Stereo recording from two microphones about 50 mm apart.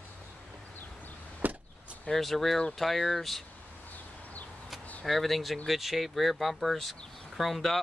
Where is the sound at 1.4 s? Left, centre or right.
Right.